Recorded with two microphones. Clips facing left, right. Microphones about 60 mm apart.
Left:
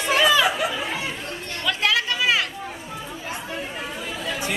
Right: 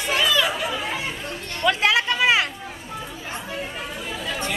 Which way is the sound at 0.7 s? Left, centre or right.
Centre.